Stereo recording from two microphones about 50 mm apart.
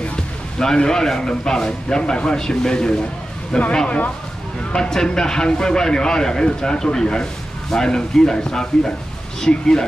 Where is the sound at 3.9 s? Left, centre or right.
Left.